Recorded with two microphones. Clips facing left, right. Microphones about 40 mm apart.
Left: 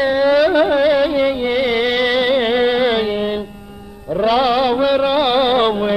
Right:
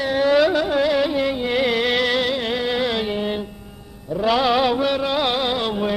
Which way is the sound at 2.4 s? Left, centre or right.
Left.